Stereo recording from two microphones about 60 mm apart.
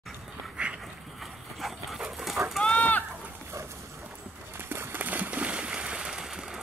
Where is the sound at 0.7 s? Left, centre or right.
Centre.